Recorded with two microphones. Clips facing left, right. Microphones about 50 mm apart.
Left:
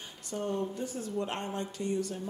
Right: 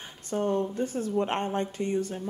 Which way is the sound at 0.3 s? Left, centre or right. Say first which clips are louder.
Right 6 dB; right.